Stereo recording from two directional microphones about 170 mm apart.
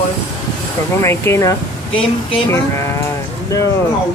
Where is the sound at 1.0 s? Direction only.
15° left (ahead or behind).